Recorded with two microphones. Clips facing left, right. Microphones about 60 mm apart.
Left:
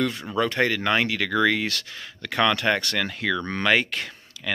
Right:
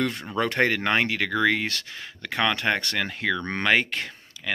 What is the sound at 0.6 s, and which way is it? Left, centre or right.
Speech, right.